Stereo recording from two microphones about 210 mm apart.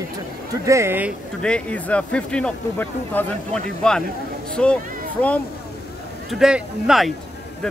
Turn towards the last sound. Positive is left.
turn(degrees=0)  # may be behind; listen again after turning